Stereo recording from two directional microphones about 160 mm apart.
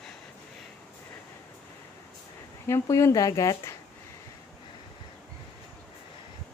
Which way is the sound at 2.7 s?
15° left (ahead or behind).